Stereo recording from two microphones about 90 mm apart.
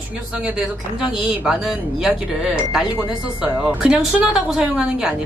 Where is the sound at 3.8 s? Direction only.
10° right (ahead or behind).